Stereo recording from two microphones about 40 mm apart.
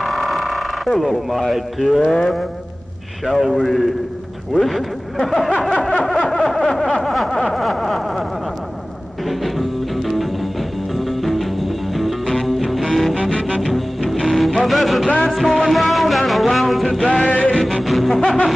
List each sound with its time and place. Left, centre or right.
0.0 s a sound: centre
2.0 s vehicle: centre
3.3 s music: centre
4.6 s speech: centre
5.6 s snicker: centre
6.1 s a sound: centre
9.4 s music: centre
13.3 s music: centre
13.6 s music: centre
17.2 s music: left
17.8 s music: centre